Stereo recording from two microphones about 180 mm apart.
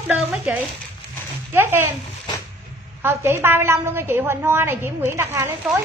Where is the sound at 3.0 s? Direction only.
10° right (ahead or behind).